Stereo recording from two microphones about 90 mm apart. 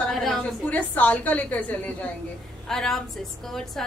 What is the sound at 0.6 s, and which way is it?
A woman's voice, 15° left (ahead or behind).